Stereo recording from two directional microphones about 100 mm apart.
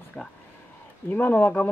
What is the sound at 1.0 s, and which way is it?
Speech, 20° left (ahead or behind).